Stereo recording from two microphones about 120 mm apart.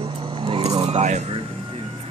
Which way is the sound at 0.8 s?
70° right (ahead or behind).